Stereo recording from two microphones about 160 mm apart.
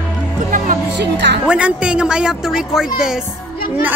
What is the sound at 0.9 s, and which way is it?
Speech, 90° right.